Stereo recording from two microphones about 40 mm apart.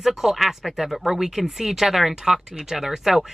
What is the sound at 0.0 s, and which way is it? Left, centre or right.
Speech, centre.